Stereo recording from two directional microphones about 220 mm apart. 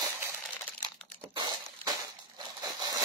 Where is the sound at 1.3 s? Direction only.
20° right (ahead or behind).